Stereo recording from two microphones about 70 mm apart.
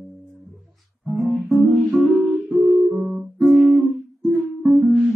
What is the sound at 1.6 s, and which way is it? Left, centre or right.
Music, right.